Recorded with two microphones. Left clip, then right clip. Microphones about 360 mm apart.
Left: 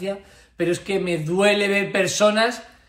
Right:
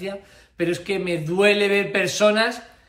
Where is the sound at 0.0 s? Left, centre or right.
Centre.